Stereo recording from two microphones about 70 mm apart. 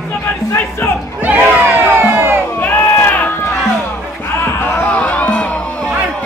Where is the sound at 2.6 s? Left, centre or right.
Left.